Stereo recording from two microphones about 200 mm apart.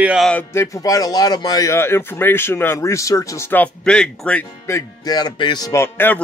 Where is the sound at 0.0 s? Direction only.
5° right (ahead or behind).